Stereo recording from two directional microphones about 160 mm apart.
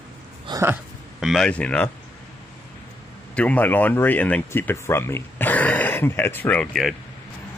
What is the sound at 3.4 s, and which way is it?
Speech, 10° left (ahead or behind).